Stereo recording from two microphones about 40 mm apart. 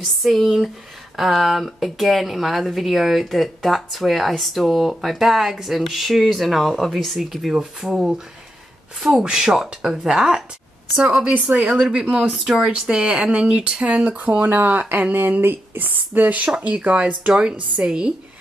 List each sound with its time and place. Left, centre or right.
0.0 s speech: centre
11.0 s speech: right
11.7 s speech: centre
12.0 s speech: right
12.4 s speech: centre
14.4 s speech: right
16.8 s speech: right